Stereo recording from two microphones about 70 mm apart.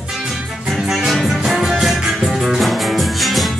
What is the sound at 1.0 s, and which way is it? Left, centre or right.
Music, centre.